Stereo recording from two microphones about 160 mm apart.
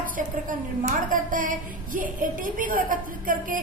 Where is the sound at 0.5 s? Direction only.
55° right (ahead or behind).